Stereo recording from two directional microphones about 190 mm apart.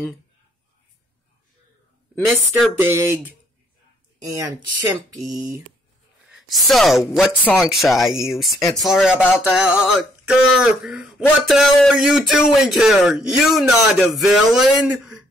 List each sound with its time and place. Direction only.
2.8 s a sound: 10° right (ahead or behind)
4.2 s speech: 15° right (ahead or behind)
5.2 s speech: centre (ahead or behind)